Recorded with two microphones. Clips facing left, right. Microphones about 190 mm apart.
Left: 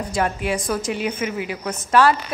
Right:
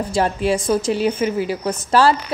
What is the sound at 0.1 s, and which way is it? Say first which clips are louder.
A woman's voice: right 4 dB; 30° right (ahead or behind).